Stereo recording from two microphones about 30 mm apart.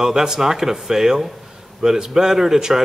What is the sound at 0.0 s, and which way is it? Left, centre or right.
A man's voice, centre.